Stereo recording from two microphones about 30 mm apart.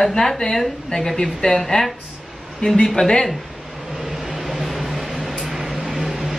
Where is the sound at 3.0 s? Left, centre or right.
Left.